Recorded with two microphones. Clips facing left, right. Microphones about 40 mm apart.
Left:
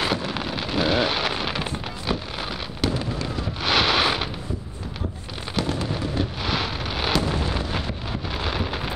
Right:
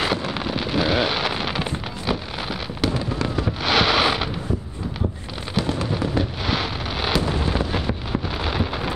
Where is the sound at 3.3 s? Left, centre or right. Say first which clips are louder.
Right 5 dB; centre.